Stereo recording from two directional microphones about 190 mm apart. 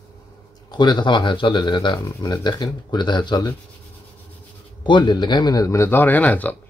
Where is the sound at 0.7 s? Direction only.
20° left (ahead or behind).